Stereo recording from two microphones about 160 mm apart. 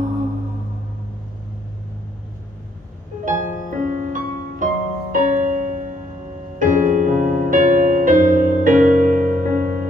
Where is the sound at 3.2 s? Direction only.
55° right (ahead or behind).